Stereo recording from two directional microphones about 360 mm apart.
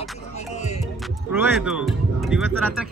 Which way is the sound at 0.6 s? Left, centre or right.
Centre.